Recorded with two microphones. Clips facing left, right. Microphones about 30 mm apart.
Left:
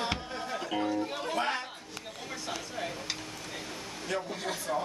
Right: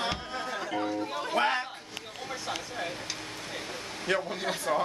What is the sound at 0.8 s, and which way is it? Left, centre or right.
Music, centre.